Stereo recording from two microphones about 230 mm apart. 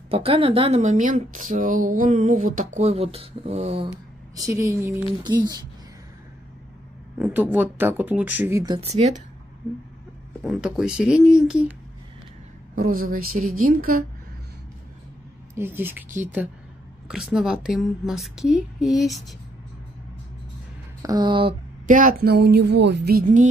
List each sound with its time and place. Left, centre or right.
0.1 s speech: right
4.4 s a woman's voice: centre
7.2 s a woman's voice: centre
10.4 s a woman's voice: centre
12.7 s speech: right
15.5 s a woman's voice: centre
21.0 s speech: centre
21.8 s speech: right